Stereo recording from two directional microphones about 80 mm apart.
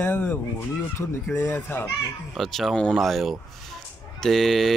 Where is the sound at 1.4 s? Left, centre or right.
Left.